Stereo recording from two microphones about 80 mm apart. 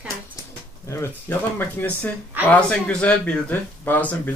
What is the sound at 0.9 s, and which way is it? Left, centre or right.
Speech, left.